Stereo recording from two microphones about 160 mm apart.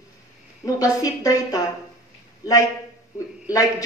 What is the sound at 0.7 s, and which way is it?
A woman's voice, 20° left (ahead or behind).